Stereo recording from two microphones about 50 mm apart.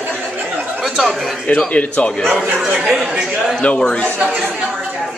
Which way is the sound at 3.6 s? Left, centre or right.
Centre.